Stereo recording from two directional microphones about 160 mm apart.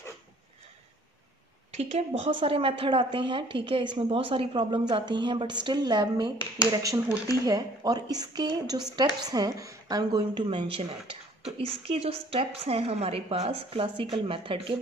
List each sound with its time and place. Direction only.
1.7 s a woman's voice: 40° right (ahead or behind)